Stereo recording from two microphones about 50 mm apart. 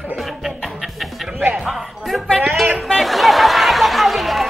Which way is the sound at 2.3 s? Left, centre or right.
Centre.